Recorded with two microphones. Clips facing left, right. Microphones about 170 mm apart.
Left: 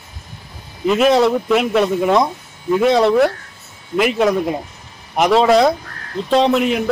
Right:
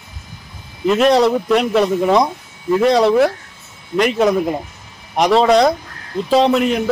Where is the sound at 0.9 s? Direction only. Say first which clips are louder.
Right 1 dB; centre (ahead or behind).